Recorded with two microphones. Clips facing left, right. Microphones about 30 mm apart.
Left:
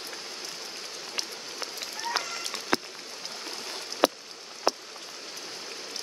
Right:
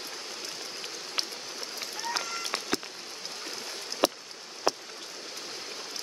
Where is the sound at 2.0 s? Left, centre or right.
Centre.